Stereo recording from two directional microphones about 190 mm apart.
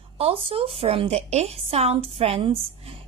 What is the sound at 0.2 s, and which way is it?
A woman's voice, 30° right (ahead or behind).